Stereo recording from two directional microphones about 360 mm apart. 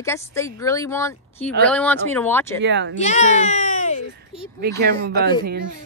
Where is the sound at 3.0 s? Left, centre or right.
Centre.